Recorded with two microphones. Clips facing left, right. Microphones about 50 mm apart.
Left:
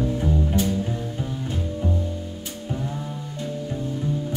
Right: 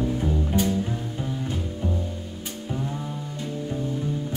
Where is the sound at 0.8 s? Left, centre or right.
Centre.